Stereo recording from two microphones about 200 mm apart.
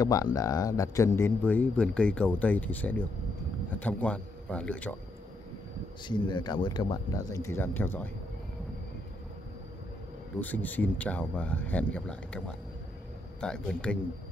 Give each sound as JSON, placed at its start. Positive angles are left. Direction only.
{"t": 0.0, "sound": "a man's voice", "side_deg": 15}
{"t": 6.0, "sound": "speech", "side_deg": 25}
{"t": 10.4, "sound": "a man's voice", "side_deg": 10}